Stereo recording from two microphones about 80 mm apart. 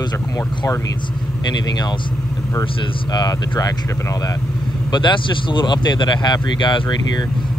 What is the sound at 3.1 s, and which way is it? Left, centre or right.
Speech, left.